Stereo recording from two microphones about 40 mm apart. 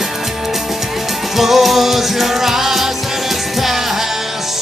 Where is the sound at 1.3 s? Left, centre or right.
Centre.